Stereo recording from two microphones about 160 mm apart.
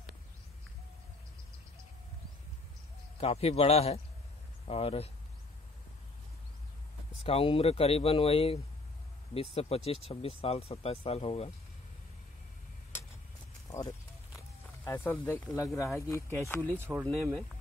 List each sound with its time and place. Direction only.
3.2 s speech: 40° left (ahead or behind)
7.2 s speech: 35° left (ahead or behind)
13.7 s clip-clop: 20° left (ahead or behind)
14.9 s speech: 15° left (ahead or behind)
16.7 s speech: 15° right (ahead or behind)
17.0 s speech: centre (ahead or behind)